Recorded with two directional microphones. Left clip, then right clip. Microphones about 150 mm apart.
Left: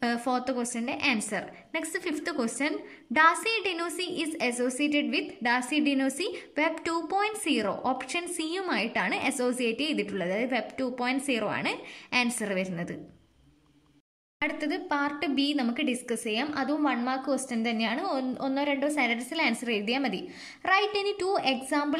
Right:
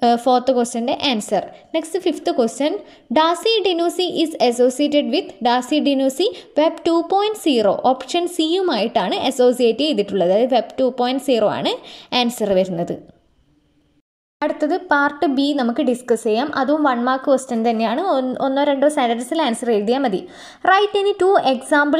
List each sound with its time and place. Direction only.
0.0 s a woman's voice: 30° right (ahead or behind)
14.5 s a woman's voice: 25° right (ahead or behind)
19.7 s a woman's voice: 20° right (ahead or behind)